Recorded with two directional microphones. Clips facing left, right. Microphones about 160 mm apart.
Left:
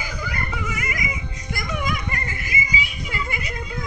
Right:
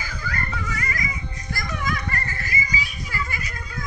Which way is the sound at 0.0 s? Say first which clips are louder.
Left 1 dB; 15° left (ahead or behind).